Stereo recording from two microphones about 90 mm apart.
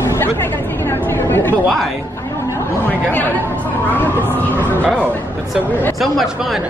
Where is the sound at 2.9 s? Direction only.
20° left (ahead or behind).